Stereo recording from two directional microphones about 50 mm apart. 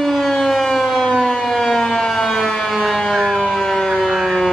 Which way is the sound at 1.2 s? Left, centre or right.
Centre.